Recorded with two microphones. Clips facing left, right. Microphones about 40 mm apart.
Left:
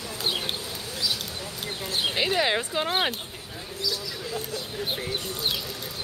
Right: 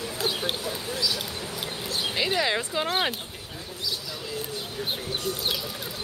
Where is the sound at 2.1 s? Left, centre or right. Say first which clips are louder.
Left 1 dB; centre.